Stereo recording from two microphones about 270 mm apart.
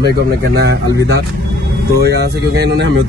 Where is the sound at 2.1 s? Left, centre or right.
Right.